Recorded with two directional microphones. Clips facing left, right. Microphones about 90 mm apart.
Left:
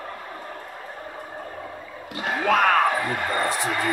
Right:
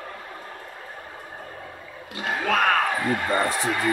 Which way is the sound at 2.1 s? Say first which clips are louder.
Left 2 dB; 30° left (ahead or behind).